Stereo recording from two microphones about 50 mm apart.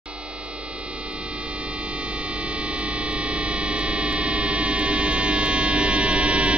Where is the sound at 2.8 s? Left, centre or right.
Right.